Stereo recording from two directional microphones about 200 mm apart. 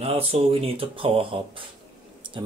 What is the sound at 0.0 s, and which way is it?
Speech, 30° right (ahead or behind).